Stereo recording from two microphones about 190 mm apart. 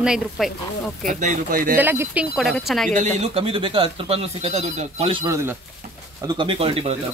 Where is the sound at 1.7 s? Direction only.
10° right (ahead or behind).